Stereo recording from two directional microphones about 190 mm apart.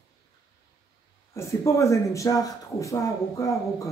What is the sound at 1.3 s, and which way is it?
Speech, 15° left (ahead or behind).